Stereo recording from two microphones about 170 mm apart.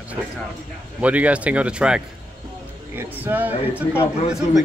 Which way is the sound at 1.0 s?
10° right (ahead or behind).